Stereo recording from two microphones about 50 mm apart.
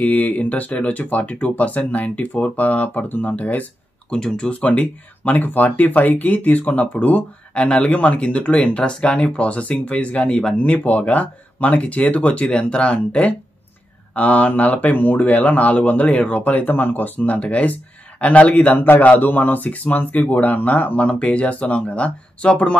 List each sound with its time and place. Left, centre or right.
0.0 s speech: left
4.1 s speech: centre
4.6 s speech: left
7.5 s speech: left